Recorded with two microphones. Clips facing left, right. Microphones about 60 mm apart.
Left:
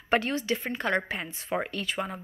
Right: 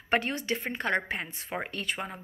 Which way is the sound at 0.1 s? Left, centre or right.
Right.